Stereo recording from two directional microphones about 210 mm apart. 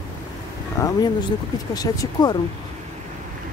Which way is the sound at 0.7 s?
15° left (ahead or behind).